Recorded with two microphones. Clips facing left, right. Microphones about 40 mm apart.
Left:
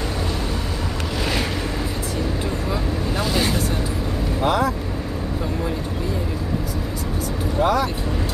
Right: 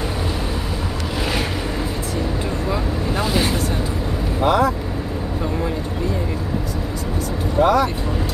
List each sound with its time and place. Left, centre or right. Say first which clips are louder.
2.7 s vehicle: right 2 dB; centre
4.4 s vehicle: right 3 dB; centre
7.5 s vehicle: right 4 dB; centre